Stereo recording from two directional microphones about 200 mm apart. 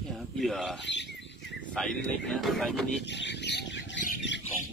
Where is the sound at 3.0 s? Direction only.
60° left (ahead or behind).